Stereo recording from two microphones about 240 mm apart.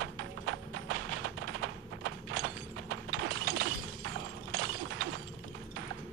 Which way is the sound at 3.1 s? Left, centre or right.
Right.